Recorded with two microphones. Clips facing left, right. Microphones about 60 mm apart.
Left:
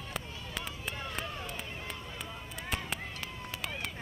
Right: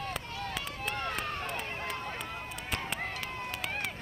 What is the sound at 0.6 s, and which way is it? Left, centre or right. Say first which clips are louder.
Run: right 1 dB; right.